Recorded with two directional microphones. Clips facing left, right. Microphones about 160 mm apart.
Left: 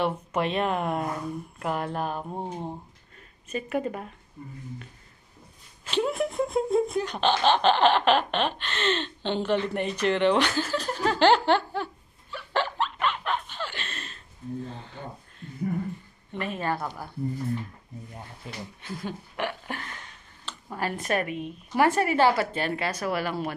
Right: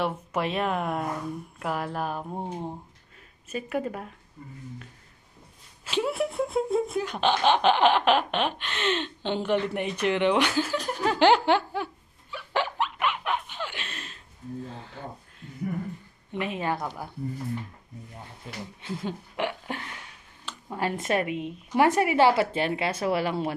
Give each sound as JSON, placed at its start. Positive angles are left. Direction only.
{"t": 0.0, "sound": "speech", "side_deg": -5}
{"t": 5.9, "sound": "laughter", "side_deg": -5}
{"t": 16.3, "sound": "speech", "side_deg": -15}
{"t": 18.8, "sound": "a sound", "side_deg": -25}
{"t": 20.7, "sound": "a woman's voice", "side_deg": -20}